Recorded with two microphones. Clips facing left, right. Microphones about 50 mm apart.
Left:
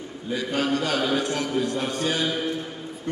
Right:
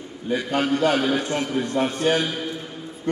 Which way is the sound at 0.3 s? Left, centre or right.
Right.